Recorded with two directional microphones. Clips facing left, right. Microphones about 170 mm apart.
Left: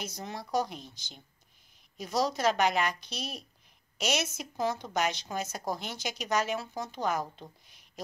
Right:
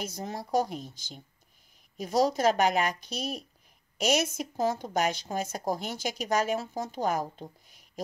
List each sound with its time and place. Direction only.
0.0 s speech: 45° right (ahead or behind)
2.0 s speech: 45° right (ahead or behind)